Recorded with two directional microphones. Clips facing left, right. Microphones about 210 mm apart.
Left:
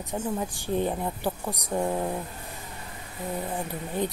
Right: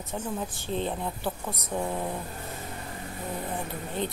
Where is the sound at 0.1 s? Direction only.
15° left (ahead or behind).